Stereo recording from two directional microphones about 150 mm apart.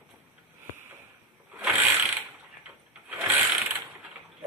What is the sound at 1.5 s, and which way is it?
Ratchet, 5° right (ahead or behind).